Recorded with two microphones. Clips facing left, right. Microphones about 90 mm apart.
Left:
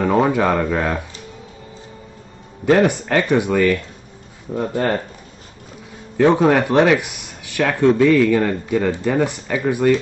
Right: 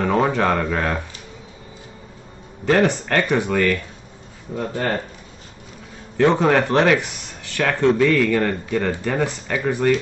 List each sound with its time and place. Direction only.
0.0 s speech: 10° left (ahead or behind)
2.6 s speech: 15° left (ahead or behind)
6.1 s speech: 10° left (ahead or behind)